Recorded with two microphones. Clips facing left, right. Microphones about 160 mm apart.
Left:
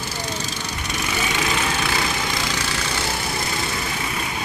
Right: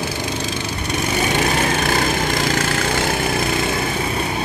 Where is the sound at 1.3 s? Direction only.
50° right (ahead or behind).